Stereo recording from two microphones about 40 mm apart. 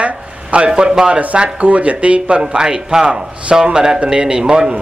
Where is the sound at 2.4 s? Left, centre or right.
Centre.